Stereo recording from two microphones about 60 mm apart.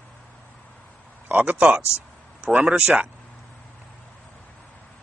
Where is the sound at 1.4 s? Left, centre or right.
Right.